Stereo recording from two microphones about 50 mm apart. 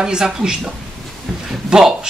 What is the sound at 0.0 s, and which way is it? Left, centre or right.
Speech, centre.